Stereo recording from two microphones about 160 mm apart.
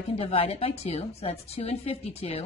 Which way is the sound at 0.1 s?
35° left (ahead or behind).